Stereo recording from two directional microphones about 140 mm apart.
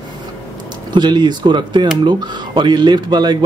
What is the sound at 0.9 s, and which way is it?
A man's voice, 30° right (ahead or behind).